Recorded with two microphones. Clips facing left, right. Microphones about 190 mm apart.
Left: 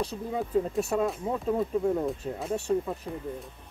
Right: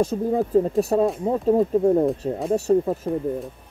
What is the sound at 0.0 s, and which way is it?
Speech, 45° right (ahead or behind).